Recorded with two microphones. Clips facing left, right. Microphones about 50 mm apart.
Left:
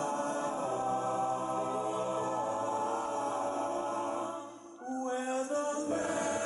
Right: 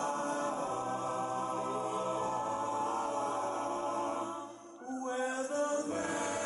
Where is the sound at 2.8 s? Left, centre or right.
Centre.